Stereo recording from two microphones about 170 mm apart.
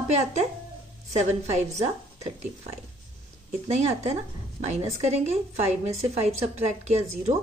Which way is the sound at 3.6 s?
40° right (ahead or behind).